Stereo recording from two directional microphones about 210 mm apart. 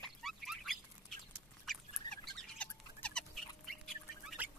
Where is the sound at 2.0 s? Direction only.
20° left (ahead or behind).